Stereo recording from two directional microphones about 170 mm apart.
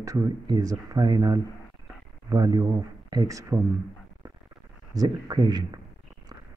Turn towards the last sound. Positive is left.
turn(degrees=-25)  # may be behind; listen again after turning